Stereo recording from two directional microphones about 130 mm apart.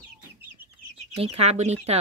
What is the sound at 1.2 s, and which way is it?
Speech, 55° right (ahead or behind).